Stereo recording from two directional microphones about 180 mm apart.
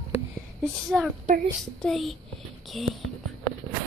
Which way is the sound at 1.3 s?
45° right (ahead or behind).